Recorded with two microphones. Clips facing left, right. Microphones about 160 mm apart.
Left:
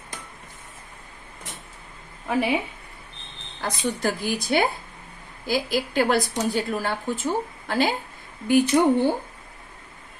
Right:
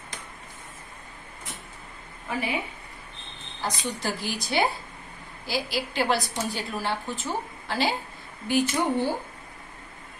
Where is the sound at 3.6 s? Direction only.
50° left (ahead or behind).